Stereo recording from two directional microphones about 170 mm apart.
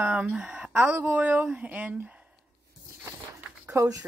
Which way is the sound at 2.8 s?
15° right (ahead or behind).